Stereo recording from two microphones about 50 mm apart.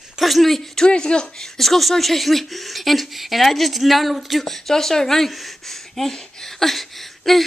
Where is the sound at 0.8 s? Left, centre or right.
Centre.